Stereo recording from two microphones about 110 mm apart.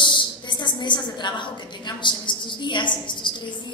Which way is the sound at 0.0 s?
45° left (ahead or behind).